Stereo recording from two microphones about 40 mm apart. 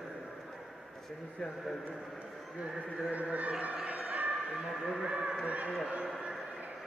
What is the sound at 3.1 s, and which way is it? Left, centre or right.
Speech, right.